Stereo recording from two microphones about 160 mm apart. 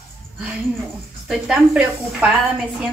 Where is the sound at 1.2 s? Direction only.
5° right (ahead or behind).